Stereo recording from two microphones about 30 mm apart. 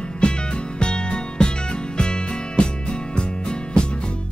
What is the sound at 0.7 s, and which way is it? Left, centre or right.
Music, left.